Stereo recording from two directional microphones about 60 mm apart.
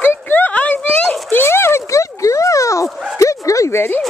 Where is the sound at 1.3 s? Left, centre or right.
Left.